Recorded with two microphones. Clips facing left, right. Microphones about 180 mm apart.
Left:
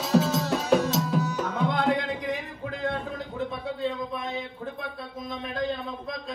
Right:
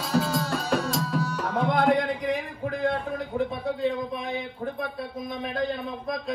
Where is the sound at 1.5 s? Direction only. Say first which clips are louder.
Right 4 dB; 60° right (ahead or behind).